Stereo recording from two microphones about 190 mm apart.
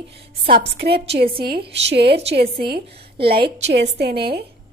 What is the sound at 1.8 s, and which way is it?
Speech, 60° right (ahead or behind).